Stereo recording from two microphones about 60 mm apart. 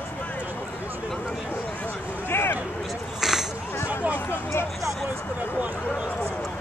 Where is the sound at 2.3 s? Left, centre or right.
Left.